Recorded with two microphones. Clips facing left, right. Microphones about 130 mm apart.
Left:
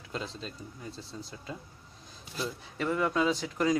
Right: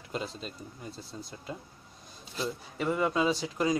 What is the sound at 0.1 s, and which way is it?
Speech, 5° right (ahead or behind).